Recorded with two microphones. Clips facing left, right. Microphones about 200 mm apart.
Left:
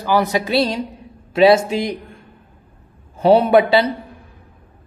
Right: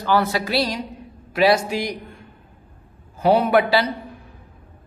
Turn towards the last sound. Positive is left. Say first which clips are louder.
# left 4 dB
turn(degrees=25)  # may be behind; listen again after turning